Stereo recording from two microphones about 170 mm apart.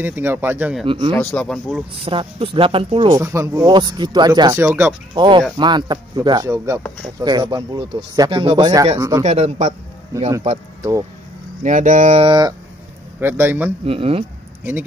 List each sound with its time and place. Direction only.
0.0 s speech: 10° right (ahead or behind)
0.8 s speech: 30° right (ahead or behind)
1.1 s speech: 10° left (ahead or behind)
2.0 s speech: 30° right (ahead or behind)
3.2 s speech: 15° right (ahead or behind)
4.6 s speech: 10° right (ahead or behind)
5.1 s speech: 25° right (ahead or behind)
9.2 s speech: 40° right (ahead or behind)
10.8 s speech: 20° right (ahead or behind)
11.6 s speech: 45° right (ahead or behind); by 12.5 s 25° right (ahead or behind)
13.2 s speech: 15° right (ahead or behind)
13.8 s speech: 35° right (ahead or behind)
14.6 s speech: 15° right (ahead or behind)